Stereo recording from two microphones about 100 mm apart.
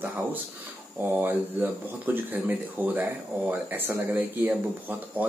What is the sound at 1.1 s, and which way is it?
Speech, 15° right (ahead or behind).